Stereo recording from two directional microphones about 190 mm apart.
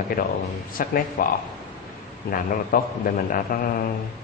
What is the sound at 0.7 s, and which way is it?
Speech, 50° left (ahead or behind).